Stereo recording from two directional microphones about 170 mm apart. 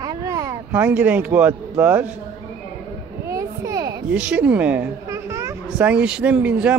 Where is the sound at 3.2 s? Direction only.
15° right (ahead or behind).